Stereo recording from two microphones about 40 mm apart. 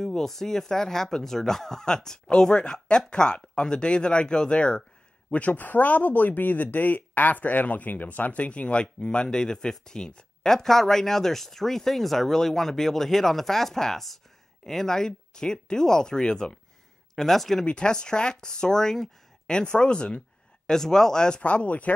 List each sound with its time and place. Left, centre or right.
0.0 s speech: centre; by 4.8 s left
5.3 s speech: left
17.1 s speech: centre
17.6 s speech: left
21.4 s speech: left